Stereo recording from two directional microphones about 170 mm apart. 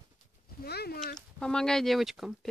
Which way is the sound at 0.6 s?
65° left (ahead or behind).